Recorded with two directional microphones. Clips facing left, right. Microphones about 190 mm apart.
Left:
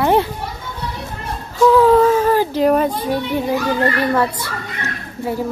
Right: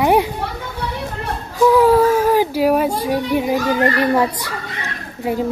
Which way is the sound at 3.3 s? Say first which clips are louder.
Right 2 dB; 15° right (ahead or behind).